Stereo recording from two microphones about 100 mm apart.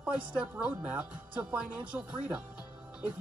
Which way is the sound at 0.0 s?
10° right (ahead or behind).